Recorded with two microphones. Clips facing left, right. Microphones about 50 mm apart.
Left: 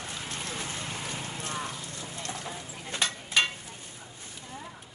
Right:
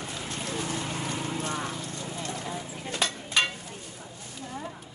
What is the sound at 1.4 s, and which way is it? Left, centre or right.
Clip-clop, centre.